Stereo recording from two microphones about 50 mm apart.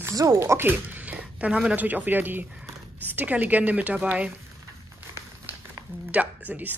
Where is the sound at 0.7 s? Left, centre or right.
Right.